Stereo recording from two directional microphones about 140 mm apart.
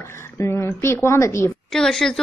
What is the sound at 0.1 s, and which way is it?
A woman's voice, 20° left (ahead or behind).